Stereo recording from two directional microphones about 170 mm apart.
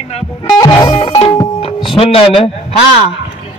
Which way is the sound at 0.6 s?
25° left (ahead or behind).